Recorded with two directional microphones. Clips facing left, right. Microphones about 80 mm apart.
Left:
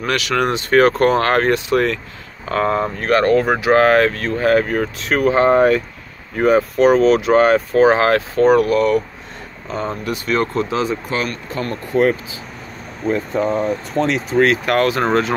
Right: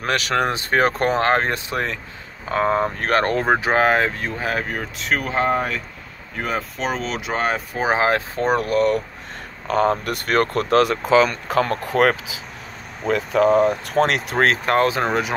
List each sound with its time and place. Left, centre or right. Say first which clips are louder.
0.0 s speech: left 2 dB; right
3.0 s speech: left 5 dB; right; by 4.3 s centre
4.4 s speech: left 11 dB; centre
7.7 s speech: left 3 dB; centre; by 9.0 s right
9.7 s speech: right 4 dB; right
11.4 s speech: right 4 dB; right
14.7 s speech: left 2 dB; right